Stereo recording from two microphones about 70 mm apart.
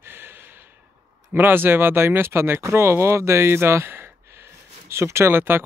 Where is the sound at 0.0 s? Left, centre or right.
Right.